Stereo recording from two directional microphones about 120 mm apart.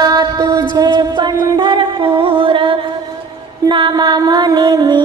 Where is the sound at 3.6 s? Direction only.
40° right (ahead or behind).